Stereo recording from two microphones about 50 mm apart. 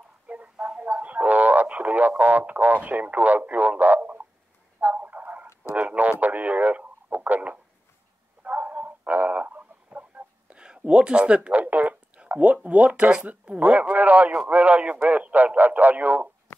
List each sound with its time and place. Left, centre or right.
0.3 s a sound: right
0.8 s speech: right
4.7 s a sound: right
5.8 s speech: right
8.5 s frog: right
10.6 s speech: centre
13.5 s speech: right
15.0 s speech: right